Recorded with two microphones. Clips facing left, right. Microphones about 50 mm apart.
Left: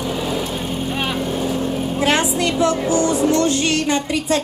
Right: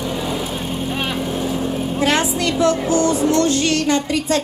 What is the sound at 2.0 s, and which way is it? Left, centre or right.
Vehicle, left.